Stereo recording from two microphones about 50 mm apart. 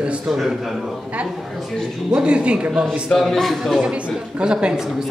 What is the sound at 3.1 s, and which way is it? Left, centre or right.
Speech, centre.